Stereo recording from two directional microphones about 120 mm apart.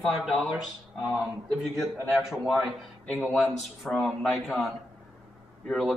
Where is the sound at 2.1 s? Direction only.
5° right (ahead or behind).